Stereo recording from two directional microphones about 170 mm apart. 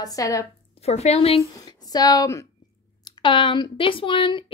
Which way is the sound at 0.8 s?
40° left (ahead or behind).